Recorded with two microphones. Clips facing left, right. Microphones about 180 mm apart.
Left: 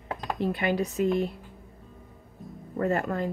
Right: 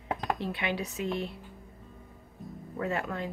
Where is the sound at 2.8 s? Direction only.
45° left (ahead or behind).